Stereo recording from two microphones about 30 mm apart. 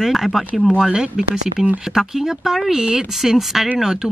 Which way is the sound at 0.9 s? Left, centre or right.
Right.